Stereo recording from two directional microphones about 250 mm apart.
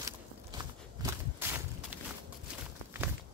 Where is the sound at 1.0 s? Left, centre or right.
Centre.